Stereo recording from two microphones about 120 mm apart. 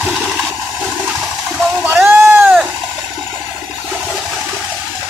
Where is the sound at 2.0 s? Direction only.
20° right (ahead or behind).